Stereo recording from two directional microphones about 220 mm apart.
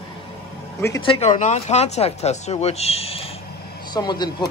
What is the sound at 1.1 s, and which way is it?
Speech, 35° left (ahead or behind).